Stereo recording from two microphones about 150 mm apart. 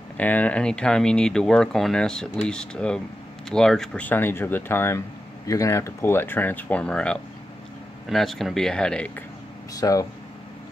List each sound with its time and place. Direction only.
0.2 s speech: 10° left (ahead or behind)
9.8 s speech: 25° left (ahead or behind)